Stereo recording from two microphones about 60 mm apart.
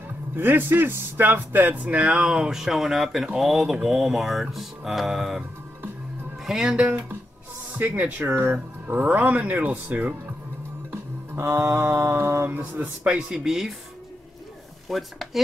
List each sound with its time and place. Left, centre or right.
0.4 s speech: right
2.1 s speech: centre
6.4 s speech: centre
7.7 s speech: right
9.0 s speech: right
10.9 s music: right
12.4 s speech: right
13.3 s speech: centre
14.9 s speech: centre